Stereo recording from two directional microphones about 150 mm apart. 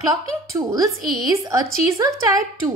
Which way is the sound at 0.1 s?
20° right (ahead or behind).